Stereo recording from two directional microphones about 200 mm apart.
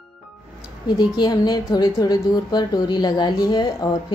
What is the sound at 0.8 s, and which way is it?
A woman's voice, 20° left (ahead or behind).